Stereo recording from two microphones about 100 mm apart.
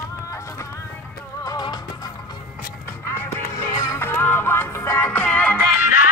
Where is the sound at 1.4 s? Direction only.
40° left (ahead or behind).